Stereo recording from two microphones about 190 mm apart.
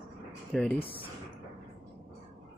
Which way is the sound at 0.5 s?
5° left (ahead or behind).